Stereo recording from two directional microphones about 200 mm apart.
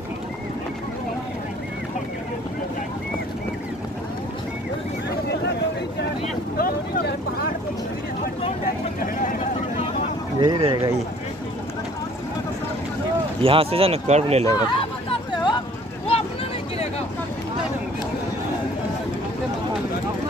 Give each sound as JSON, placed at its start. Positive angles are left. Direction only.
{"t": 6.6, "sound": "vehicle", "side_deg": 50}
{"t": 9.0, "sound": "vehicle", "side_deg": 45}
{"t": 10.4, "sound": "speech", "side_deg": -25}
{"t": 13.4, "sound": "speech", "side_deg": -30}
{"t": 14.4, "sound": "hubbub", "side_deg": 20}